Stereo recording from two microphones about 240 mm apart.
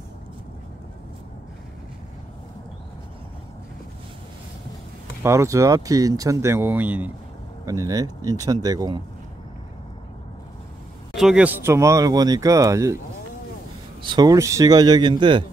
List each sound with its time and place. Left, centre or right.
5.2 s speech: centre
11.1 s speech: centre
14.0 s speech: centre